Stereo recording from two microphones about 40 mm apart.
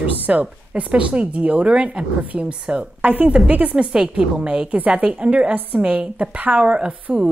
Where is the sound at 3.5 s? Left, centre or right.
Right.